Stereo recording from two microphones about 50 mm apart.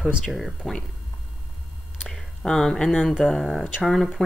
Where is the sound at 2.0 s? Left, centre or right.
Centre.